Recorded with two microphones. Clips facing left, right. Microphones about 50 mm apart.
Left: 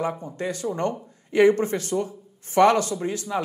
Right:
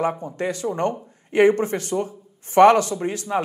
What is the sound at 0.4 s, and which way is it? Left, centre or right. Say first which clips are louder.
Speech: right 3 dB; right.